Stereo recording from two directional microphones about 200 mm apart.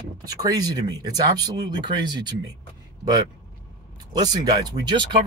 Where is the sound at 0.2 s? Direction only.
20° right (ahead or behind).